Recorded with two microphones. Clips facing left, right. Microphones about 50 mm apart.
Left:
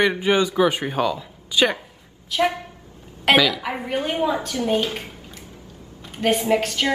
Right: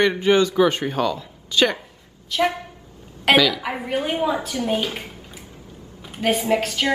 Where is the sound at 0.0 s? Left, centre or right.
Centre.